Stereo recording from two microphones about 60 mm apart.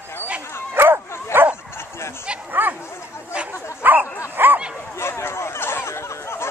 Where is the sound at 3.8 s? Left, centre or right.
Right.